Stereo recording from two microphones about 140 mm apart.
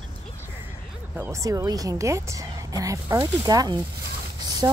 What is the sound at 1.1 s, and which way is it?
Speech, 15° right (ahead or behind).